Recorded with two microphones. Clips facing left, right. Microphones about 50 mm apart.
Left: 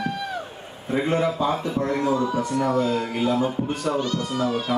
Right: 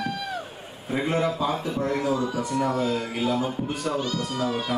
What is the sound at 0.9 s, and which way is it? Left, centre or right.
Speech, centre.